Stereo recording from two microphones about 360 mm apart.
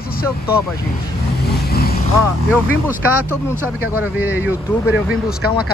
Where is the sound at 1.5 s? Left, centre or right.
Left.